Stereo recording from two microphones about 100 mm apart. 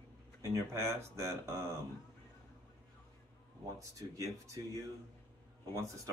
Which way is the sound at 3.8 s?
35° right (ahead or behind).